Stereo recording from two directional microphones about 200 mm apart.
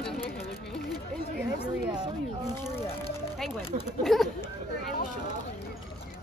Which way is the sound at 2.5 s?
10° left (ahead or behind).